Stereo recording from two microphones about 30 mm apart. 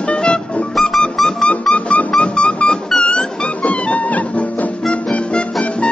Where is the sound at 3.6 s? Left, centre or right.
Left.